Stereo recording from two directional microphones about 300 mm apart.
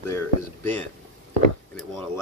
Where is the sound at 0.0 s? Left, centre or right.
Centre.